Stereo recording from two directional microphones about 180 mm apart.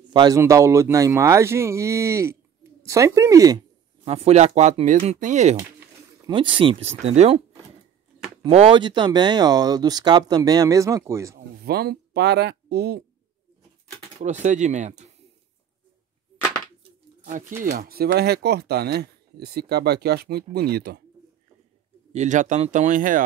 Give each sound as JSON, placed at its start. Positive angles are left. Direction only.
{"t": 0.1, "sound": "speech", "side_deg": -20}
{"t": 5.6, "sound": "a sound", "side_deg": -15}
{"t": 6.3, "sound": "speech", "side_deg": -30}
{"t": 8.5, "sound": "speech", "side_deg": -35}
{"t": 11.3, "sound": "speech", "side_deg": -60}
{"t": 14.2, "sound": "speech", "side_deg": -40}
{"t": 17.2, "sound": "speech", "side_deg": -45}
{"t": 17.6, "sound": "speech", "side_deg": -55}
{"t": 22.1, "sound": "speech", "side_deg": -40}